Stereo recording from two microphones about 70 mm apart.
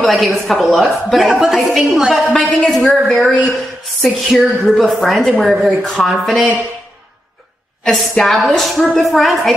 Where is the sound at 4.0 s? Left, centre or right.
Centre.